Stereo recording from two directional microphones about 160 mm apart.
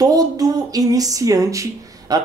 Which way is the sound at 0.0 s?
25° right (ahead or behind).